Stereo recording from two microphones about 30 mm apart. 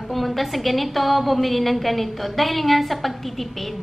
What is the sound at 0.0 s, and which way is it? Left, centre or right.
A woman's voice, centre.